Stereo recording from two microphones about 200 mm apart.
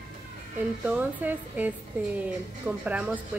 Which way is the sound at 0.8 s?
10° right (ahead or behind).